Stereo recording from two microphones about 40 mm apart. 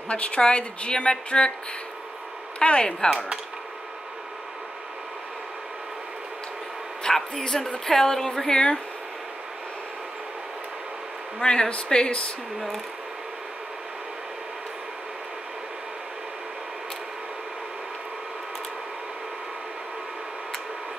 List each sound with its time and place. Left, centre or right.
0.1 s a woman's voice: left
2.6 s speech: left
7.0 s a man's voice: centre
11.3 s speech: centre
12.5 s speech: centre